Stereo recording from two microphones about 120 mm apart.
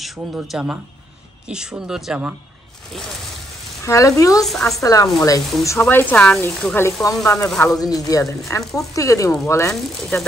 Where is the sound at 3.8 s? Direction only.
25° left (ahead or behind).